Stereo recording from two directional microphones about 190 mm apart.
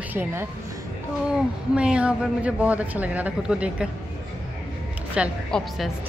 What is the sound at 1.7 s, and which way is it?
A woman's voice, 5° right (ahead or behind).